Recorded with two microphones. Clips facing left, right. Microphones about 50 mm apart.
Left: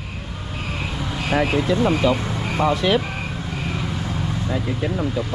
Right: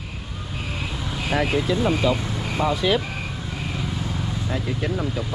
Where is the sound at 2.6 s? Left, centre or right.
Left.